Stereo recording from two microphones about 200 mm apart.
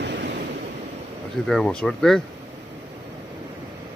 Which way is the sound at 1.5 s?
5° left (ahead or behind).